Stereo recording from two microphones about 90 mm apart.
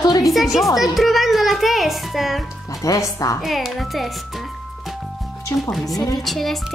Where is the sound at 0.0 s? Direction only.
45° left (ahead or behind).